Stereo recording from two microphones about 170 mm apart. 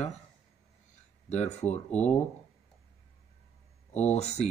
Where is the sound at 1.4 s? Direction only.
40° left (ahead or behind).